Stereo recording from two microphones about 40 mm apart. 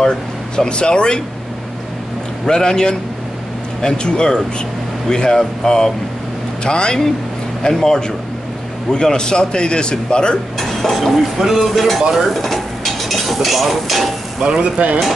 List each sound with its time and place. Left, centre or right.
0.0 s speech: centre
2.4 s a man's voice: centre
10.6 s a sound: centre
11.0 s speech: centre
14.6 s speech: right